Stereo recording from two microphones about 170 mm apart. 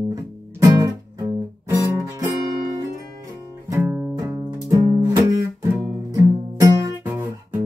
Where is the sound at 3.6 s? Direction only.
10° right (ahead or behind).